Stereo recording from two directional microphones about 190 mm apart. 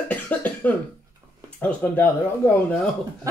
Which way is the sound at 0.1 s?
10° left (ahead or behind).